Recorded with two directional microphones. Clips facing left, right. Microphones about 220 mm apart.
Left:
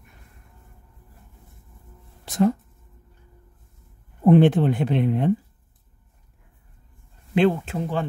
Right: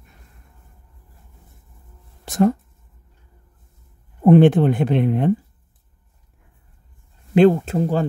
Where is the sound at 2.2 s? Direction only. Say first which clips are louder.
Right 3 dB; 50° right (ahead or behind).